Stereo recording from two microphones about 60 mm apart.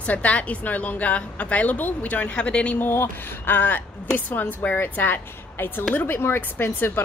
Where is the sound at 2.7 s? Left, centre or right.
Left.